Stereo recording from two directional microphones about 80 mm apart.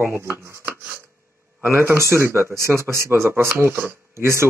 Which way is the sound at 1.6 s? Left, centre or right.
Right.